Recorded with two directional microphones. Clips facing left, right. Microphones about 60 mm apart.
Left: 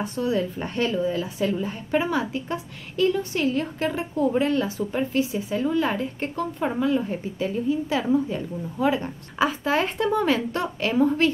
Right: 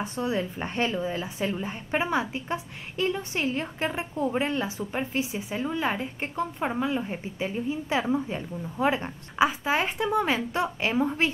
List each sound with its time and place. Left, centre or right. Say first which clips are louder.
0.0 s speech: left 4 dB; right
9.4 s a woman's voice: left 1 dB; centre